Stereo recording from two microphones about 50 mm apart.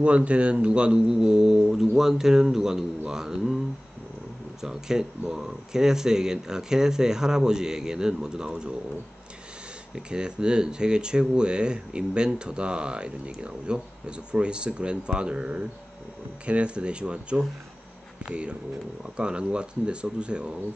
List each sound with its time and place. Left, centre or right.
0.0 s speech: right
4.6 s speech: centre
9.9 s speech: centre